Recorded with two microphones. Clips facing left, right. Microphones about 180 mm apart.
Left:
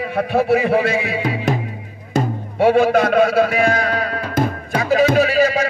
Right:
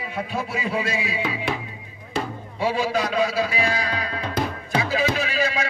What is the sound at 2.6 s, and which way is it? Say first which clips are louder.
Music: left 10 dB; 60° left (ahead or behind).